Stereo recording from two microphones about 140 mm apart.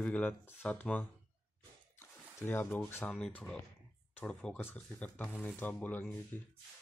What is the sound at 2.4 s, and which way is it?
Speech, 15° left (ahead or behind).